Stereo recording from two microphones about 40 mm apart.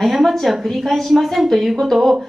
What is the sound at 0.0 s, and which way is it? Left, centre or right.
A woman's voice, centre.